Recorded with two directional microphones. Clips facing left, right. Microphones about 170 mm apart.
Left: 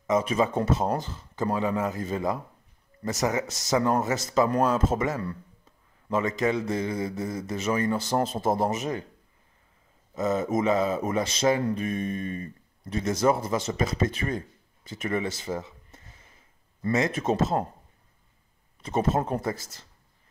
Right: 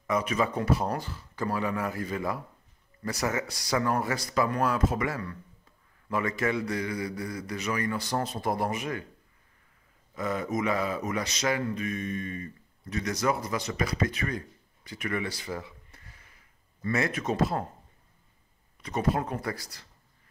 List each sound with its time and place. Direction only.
0.0 s a man's voice: 25° left (ahead or behind)
10.1 s a man's voice: 25° left (ahead or behind)
18.8 s a man's voice: 25° left (ahead or behind)